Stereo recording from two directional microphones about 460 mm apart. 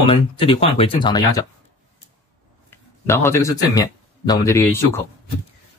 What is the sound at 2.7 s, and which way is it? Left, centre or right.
Speech, centre.